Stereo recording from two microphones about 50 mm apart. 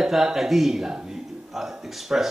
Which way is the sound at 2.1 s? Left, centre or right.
Centre.